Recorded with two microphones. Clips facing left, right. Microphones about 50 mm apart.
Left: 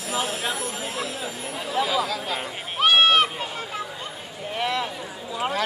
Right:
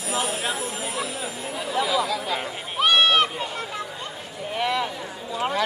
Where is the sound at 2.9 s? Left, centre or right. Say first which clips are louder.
Left 1 dB; centre.